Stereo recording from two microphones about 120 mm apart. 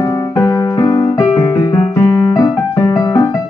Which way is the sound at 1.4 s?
20° left (ahead or behind).